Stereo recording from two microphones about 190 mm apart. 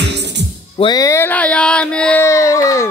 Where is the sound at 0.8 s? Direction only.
20° left (ahead or behind); by 2.2 s 5° left (ahead or behind).